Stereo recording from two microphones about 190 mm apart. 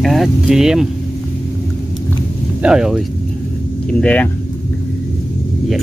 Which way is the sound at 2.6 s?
5° right (ahead or behind).